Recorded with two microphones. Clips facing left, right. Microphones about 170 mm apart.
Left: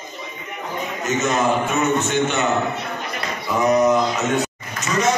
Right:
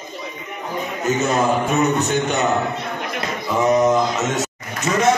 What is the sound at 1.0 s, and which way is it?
A man's voice, 30° right (ahead or behind).